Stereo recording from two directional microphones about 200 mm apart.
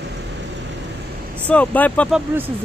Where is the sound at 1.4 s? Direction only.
5° left (ahead or behind).